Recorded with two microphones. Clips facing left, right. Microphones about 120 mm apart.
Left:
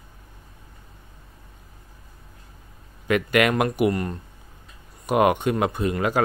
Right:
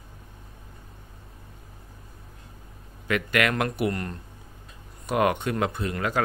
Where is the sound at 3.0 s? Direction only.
20° left (ahead or behind).